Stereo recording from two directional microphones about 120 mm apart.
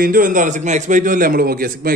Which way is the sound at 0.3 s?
90° right.